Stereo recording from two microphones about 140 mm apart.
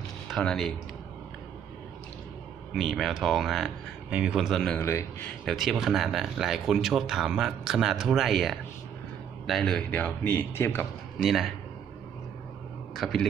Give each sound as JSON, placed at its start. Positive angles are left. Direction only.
{"t": 0.3, "sound": "speech", "side_deg": 5}
{"t": 2.7, "sound": "speech", "side_deg": 0}
{"t": 4.7, "sound": "speech", "side_deg": 15}
{"t": 5.4, "sound": "speech", "side_deg": 5}
{"t": 11.1, "sound": "speech", "side_deg": 0}
{"t": 12.9, "sound": "speech", "side_deg": 0}